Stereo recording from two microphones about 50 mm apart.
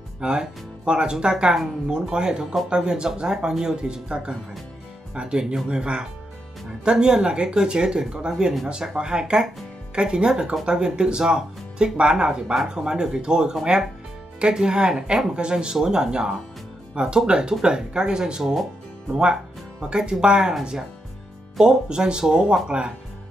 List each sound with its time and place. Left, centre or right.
0.2 s speech: centre
19.8 s speech: centre
21.5 s speech: centre